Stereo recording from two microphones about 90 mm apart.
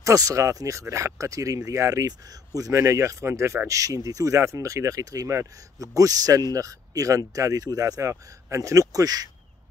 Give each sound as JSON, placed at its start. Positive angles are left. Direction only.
{"t": 0.0, "sound": "speech", "side_deg": -40}